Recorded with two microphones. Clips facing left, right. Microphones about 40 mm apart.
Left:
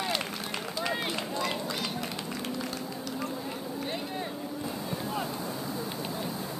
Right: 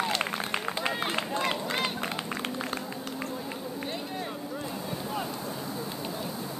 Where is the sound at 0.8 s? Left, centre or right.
Right.